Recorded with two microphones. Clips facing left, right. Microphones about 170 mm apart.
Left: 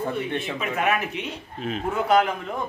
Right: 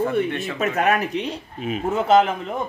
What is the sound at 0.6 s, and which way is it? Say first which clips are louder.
Speech: right 6 dB; 40° right (ahead or behind).